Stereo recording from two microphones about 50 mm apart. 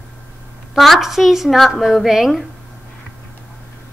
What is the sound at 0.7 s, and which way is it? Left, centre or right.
A woman's voice, centre.